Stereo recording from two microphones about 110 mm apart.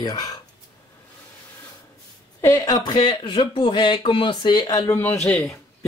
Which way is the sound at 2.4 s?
25° left (ahead or behind).